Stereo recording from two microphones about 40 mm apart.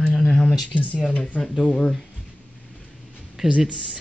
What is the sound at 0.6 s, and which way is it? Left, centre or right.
Speech, left.